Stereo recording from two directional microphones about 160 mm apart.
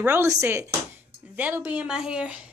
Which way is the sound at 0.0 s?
15° right (ahead or behind).